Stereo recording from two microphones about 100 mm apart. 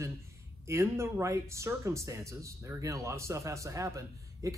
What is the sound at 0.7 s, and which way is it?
Speech, 25° right (ahead or behind).